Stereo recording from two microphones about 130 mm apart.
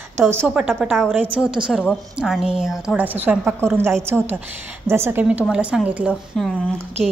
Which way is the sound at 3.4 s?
15° right (ahead or behind).